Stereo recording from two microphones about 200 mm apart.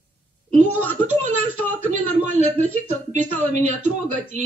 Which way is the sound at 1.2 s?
90° right.